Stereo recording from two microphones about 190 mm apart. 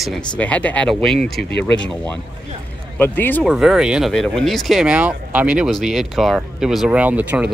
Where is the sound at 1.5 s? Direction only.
65° left (ahead or behind).